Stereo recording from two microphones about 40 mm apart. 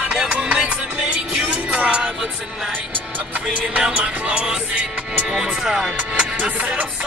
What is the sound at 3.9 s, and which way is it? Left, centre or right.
Music, right.